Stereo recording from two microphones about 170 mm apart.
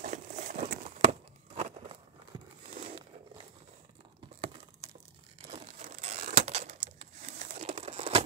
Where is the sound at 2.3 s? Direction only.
25° right (ahead or behind).